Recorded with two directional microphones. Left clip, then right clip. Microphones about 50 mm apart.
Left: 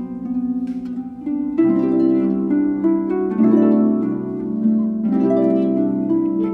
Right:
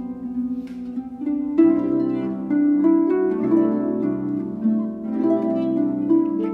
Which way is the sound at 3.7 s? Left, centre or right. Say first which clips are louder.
Left 5 dB; centre.